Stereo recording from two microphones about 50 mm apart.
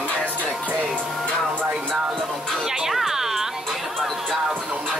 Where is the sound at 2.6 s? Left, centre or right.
Centre.